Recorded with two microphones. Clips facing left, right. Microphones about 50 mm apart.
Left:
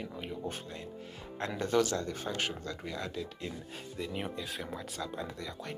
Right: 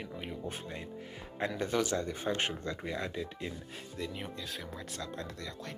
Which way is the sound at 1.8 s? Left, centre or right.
Centre.